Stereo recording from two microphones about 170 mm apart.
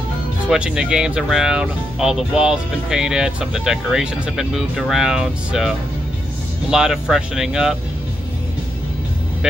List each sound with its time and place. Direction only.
0.5 s speech: 5° right (ahead or behind)